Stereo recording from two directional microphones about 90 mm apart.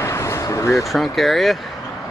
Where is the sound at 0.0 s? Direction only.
30° left (ahead or behind).